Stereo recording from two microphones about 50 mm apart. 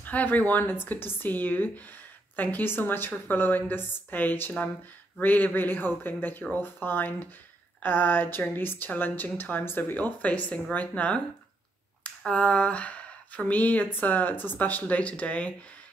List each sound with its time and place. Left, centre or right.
0.0 s a woman's voice: left
12.3 s speech: left